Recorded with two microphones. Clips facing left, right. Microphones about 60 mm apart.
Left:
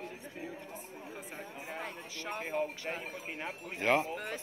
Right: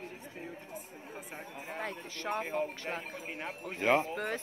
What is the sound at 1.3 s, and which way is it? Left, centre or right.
Speech, right.